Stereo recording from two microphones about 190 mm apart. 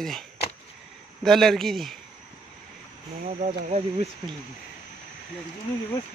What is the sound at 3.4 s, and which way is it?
Speech, 35° right (ahead or behind).